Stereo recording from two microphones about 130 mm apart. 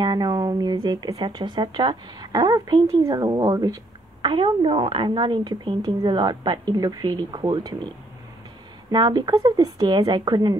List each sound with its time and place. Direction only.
0.0 s a sound: 30° right (ahead or behind)
0.7 s a woman's voice: 30° right (ahead or behind)
8.9 s a woman's voice: 35° right (ahead or behind)